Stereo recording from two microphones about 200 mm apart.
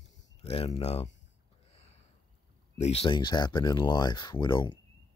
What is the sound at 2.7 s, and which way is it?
Speech, 30° left (ahead or behind).